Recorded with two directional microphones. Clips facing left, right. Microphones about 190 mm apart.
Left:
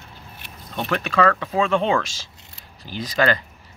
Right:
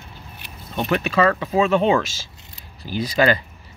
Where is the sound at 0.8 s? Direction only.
5° right (ahead or behind).